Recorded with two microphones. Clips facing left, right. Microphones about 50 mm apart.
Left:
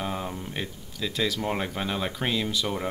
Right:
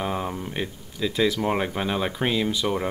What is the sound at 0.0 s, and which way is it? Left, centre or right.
Speech, centre.